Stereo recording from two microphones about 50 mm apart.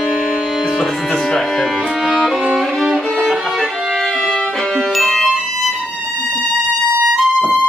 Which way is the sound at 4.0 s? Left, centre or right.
Centre.